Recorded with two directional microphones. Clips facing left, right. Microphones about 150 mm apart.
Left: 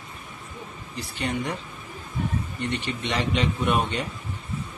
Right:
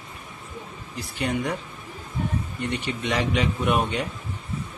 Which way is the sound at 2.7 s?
10° right (ahead or behind).